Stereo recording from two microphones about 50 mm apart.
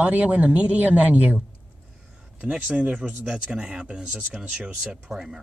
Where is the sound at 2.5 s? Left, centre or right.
Right.